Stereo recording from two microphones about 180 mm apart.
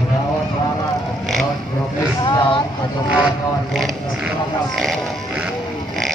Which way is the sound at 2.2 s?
25° left (ahead or behind).